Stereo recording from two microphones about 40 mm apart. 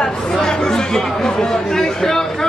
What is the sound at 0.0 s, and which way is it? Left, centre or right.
Chatter, centre.